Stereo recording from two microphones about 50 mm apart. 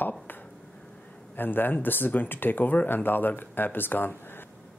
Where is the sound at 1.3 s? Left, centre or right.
Left.